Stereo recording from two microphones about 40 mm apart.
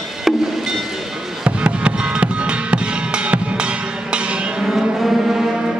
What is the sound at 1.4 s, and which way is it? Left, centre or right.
Music, right.